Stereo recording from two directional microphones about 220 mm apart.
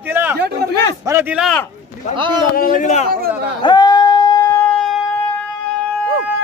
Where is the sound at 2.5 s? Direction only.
40° left (ahead or behind).